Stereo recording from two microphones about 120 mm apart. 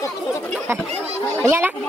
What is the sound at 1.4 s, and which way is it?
Speech, 20° right (ahead or behind).